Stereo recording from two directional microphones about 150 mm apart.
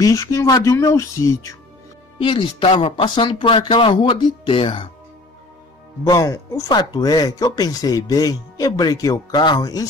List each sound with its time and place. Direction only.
0.0 s speech: 20° left (ahead or behind)
2.2 s speech: 35° left (ahead or behind)
6.0 s speech: 25° left (ahead or behind)